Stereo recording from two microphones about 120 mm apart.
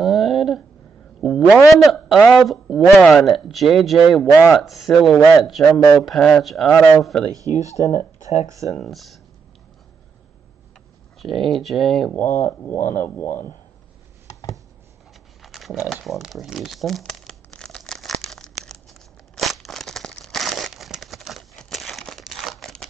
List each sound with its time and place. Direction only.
0.0 s a sound: centre (ahead or behind)
1.2 s a man's voice: 5° right (ahead or behind)
4.3 s speech: 25° left (ahead or behind)
4.6 s speech: centre (ahead or behind)
7.6 s speech: 25° right (ahead or behind)
8.2 s speech: 70° left (ahead or behind)
8.7 s speech: centre (ahead or behind)
11.1 s speech: centre (ahead or behind)
12.4 s speech: 20° left (ahead or behind)
15.4 s a sound: centre (ahead or behind)
15.9 s crumpling: centre (ahead or behind)